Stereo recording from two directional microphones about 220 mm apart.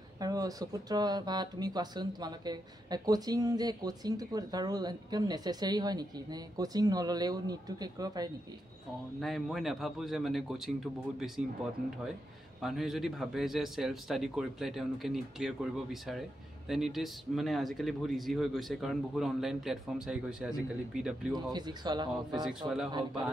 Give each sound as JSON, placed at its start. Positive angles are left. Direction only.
{"t": 0.2, "sound": "speech", "side_deg": -15}
{"t": 9.2, "sound": "speech", "side_deg": 0}
{"t": 12.6, "sound": "speech", "side_deg": 0}
{"t": 21.5, "sound": "speech", "side_deg": -20}
{"t": 22.5, "sound": "speech", "side_deg": -5}
{"t": 22.8, "sound": "speech", "side_deg": -20}